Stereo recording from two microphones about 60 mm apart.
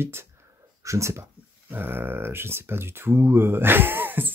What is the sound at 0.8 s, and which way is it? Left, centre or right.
Speech, right.